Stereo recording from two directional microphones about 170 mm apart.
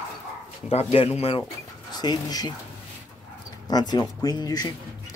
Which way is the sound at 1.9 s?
25° left (ahead or behind).